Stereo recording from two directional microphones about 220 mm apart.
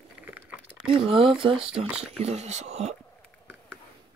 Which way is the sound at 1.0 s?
25° right (ahead or behind).